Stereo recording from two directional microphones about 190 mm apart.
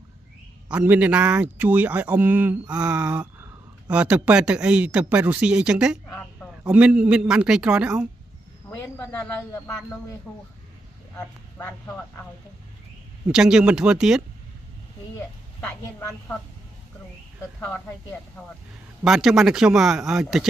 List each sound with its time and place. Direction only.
0.7 s a man's voice: 5° right (ahead or behind)
8.6 s a man's voice: 15° left (ahead or behind)
11.1 s speech: 10° left (ahead or behind)
13.3 s a man's voice: 5° right (ahead or behind)
16.0 s a woman's voice: 15° left (ahead or behind)
19.0 s a man's voice: centre (ahead or behind)